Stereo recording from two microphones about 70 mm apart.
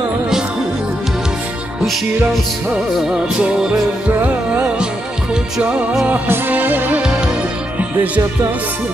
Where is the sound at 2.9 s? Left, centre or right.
Centre.